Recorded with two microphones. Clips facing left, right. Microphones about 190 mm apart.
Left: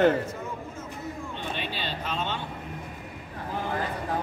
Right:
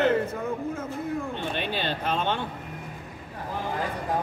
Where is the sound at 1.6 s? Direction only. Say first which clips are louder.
Right 4 dB; 55° right (ahead or behind).